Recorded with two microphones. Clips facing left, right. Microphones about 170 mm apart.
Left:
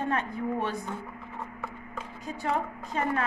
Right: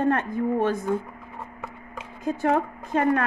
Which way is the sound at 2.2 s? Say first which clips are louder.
Right 8 dB; 50° right (ahead or behind).